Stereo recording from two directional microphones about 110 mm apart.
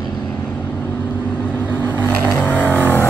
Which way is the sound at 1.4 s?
15° left (ahead or behind).